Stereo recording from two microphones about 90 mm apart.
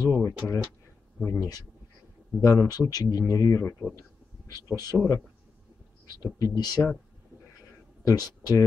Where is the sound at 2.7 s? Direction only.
45° left (ahead or behind).